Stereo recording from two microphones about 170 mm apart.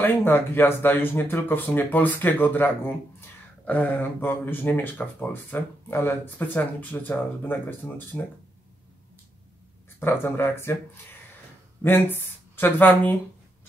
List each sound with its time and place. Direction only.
0.0 s speech: 10° left (ahead or behind)
9.9 s speech: 15° left (ahead or behind)
11.8 s speech: 10° left (ahead or behind)